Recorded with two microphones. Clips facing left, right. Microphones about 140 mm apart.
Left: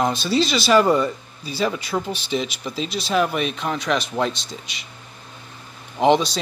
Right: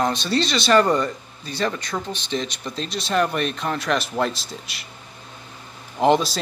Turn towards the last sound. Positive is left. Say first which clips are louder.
# left 1 dB
turn(degrees=0)  # may be behind; listen again after turning